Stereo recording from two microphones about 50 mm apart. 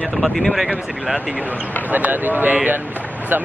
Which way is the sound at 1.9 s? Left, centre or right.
Right.